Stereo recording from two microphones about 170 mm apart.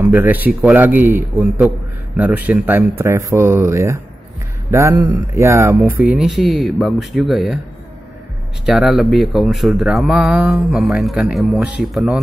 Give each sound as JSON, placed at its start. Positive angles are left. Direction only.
{"t": 0.0, "sound": "speech", "side_deg": -10}
{"t": 6.0, "sound": "speech", "side_deg": -5}
{"t": 8.6, "sound": "speech", "side_deg": 0}